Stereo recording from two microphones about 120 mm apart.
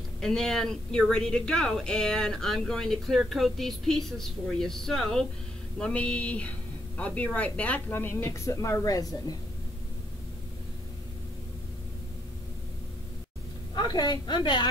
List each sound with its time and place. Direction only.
0.2 s speech: 5° left (ahead or behind)
5.8 s a sound: 10° left (ahead or behind)
7.0 s a woman's voice: 10° left (ahead or behind); by 9.4 s 30° left (ahead or behind)
13.7 s a woman's voice: 35° left (ahead or behind)